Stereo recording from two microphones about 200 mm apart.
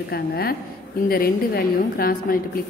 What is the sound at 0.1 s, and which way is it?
A woman's voice, 50° left (ahead or behind).